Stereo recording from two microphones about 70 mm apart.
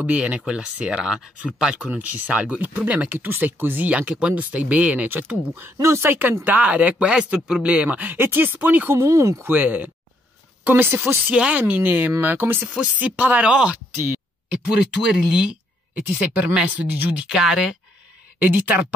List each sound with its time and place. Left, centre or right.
0.0 s speech: centre
5.8 s speech: right
6.4 s speech: right
8.2 s speech: right
9.0 s speech: right
9.5 s speech: right
11.2 s speech: centre
12.6 s speech: centre
13.9 s speech: right
14.5 s speech: centre
18.4 s speech: right